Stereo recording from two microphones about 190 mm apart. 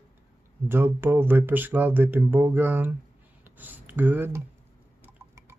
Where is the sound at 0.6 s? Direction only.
10° right (ahead or behind).